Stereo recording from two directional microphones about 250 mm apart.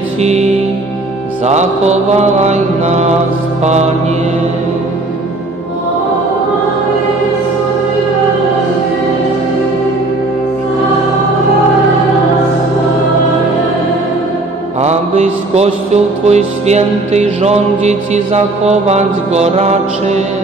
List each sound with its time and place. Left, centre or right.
0.2 s music: right
14.8 s music: right